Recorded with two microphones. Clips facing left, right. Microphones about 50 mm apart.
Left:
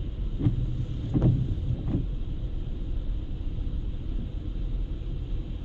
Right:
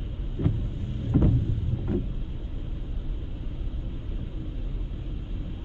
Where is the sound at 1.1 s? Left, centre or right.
Right.